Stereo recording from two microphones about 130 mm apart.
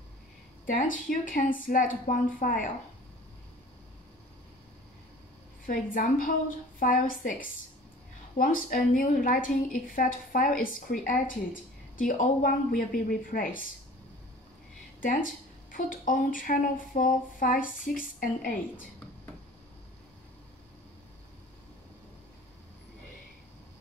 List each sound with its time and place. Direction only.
0.7 s speech: 90° left
5.7 s speech: 90° left
15.0 s speech: 90° left